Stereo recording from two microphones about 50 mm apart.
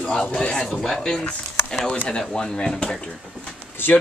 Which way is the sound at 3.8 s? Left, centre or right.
Left.